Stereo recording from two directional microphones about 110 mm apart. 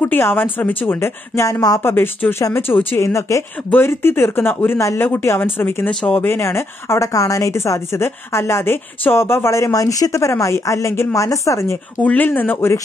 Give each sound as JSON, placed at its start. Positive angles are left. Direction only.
{"t": 0.0, "sound": "a woman's voice", "side_deg": 20}
{"t": 1.8, "sound": "a woman's voice", "side_deg": 20}
{"t": 5.9, "sound": "speech", "side_deg": 10}
{"t": 6.2, "sound": "a woman's voice", "side_deg": 25}
{"t": 12.0, "sound": "speech", "side_deg": 15}